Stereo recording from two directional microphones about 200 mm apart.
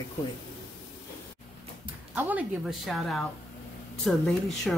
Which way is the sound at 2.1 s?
5° right (ahead or behind).